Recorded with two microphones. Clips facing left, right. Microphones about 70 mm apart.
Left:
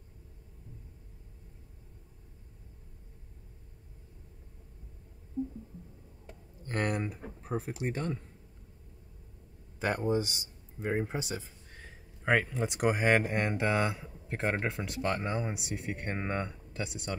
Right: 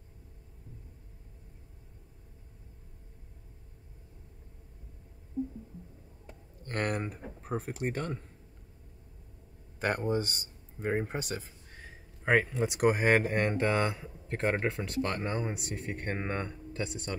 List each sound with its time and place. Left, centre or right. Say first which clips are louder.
6.6 s a man's voice: even; right
9.8 s a man's voice: even; right
12.3 s speech: right 2 dB; centre